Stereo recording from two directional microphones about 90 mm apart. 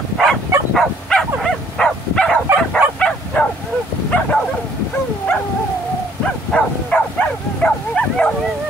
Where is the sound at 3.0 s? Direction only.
10° left (ahead or behind).